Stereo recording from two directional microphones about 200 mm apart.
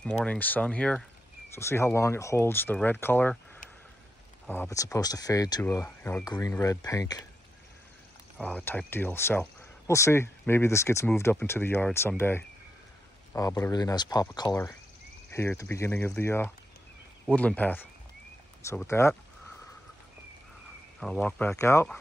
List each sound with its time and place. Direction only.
0.0 s speech: 5° left (ahead or behind)
8.4 s speech: 5° left (ahead or behind)
21.0 s speech: 5° left (ahead or behind)